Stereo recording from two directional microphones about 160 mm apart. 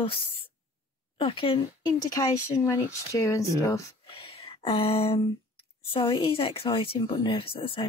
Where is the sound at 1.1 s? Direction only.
35° left (ahead or behind).